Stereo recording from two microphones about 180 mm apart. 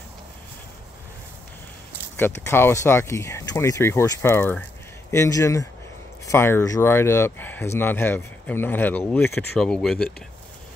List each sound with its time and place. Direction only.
2.4 s speech: 15° left (ahead or behind)